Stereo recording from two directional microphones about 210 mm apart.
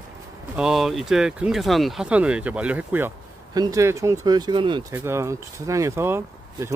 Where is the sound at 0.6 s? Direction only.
Centre (ahead or behind).